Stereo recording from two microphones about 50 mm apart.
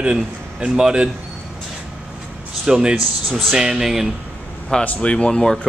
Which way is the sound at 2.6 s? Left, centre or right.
Centre.